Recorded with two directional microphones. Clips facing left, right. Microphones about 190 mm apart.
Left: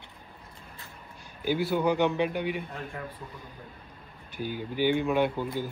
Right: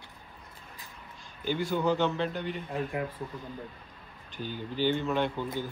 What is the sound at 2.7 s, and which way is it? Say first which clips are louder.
Speech: right 6 dB; 15° right (ahead or behind).